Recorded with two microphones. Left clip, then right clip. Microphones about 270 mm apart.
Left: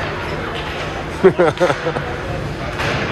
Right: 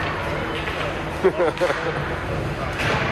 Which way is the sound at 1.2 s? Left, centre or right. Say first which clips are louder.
Left 7 dB; left.